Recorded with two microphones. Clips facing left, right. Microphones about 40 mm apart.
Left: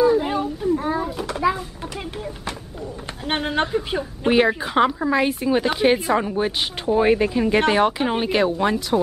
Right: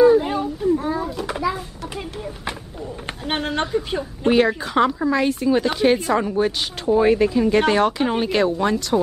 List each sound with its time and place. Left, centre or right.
0.2 s baby cry: centre
0.9 s children playing: centre
3.3 s a woman's voice: centre